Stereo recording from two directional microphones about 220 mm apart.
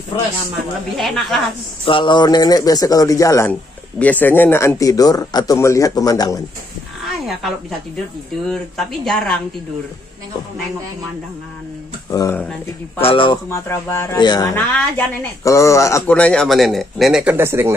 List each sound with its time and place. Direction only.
0.9 s speech: centre (ahead or behind)
1.9 s speech: 20° left (ahead or behind)
8.5 s speech: centre (ahead or behind)
12.1 s speech: 15° left (ahead or behind)
13.0 s speech: 25° left (ahead or behind); by 17.7 s 10° right (ahead or behind)